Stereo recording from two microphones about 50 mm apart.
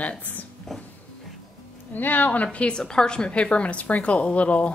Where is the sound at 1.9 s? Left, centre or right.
Left.